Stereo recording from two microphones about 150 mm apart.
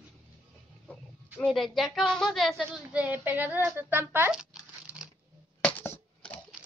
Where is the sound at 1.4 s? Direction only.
Centre (ahead or behind).